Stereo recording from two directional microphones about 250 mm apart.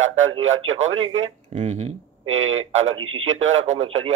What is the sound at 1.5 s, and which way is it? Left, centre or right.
Speech, right.